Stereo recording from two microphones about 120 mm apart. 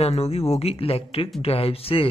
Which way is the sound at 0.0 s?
65° left (ahead or behind).